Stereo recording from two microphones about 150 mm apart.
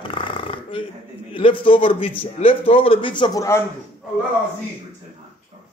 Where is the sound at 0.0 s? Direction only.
35° left (ahead or behind).